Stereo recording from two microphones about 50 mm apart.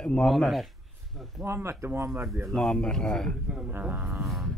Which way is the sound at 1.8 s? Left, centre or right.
Right.